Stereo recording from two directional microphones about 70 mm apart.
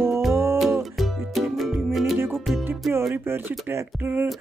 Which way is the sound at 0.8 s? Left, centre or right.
Centre.